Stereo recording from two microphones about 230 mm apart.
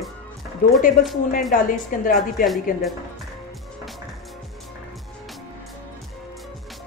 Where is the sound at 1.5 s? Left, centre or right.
Left.